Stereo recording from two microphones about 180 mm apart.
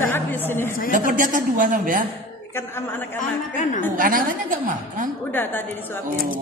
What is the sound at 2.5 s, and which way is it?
Speech, 15° left (ahead or behind).